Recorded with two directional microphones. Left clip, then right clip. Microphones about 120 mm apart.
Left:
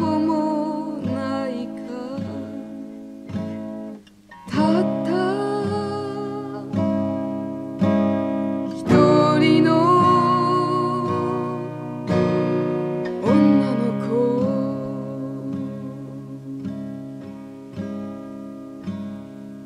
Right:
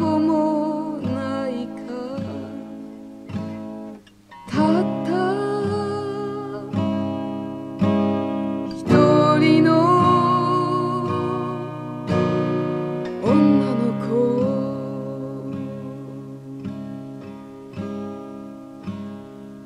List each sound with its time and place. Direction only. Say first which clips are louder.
0.0 s music: right 2 dB; 15° left (ahead or behind)
4.5 s music: even; 15° left (ahead or behind)
12.7 s music: left 2 dB; 10° left (ahead or behind)